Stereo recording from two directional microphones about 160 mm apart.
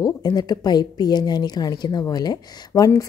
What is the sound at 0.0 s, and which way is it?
A woman's voice, 25° left (ahead or behind).